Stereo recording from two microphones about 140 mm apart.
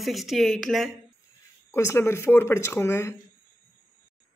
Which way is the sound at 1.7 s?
15° left (ahead or behind).